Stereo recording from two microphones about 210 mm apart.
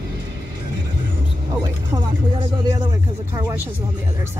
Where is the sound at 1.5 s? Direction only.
25° right (ahead or behind).